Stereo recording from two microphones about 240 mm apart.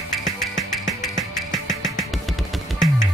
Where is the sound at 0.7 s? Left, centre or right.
Centre.